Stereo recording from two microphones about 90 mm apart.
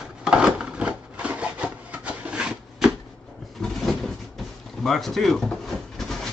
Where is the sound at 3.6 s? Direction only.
5° left (ahead or behind).